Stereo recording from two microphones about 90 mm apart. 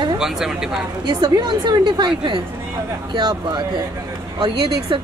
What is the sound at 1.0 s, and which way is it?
A woman's voice, 55° right (ahead or behind).